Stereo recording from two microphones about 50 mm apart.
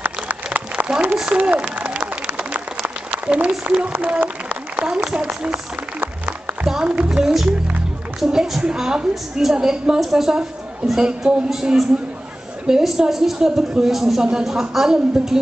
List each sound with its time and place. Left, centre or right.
0.0 s a sound: right
0.8 s a woman's voice: centre
1.3 s speech: right
3.1 s speech: right
5.9 s music: right
6.7 s speech: right
7.1 s a woman's voice: centre
11.0 s a woman's voice: centre